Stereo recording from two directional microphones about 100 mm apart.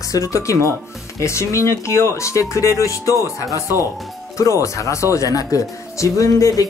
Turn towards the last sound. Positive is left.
turn(degrees=35)  # may be behind; listen again after turning